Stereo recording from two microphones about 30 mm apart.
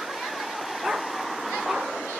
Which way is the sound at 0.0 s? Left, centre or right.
Centre.